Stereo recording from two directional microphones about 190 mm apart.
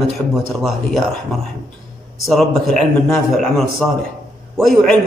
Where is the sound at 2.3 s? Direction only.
Centre (ahead or behind).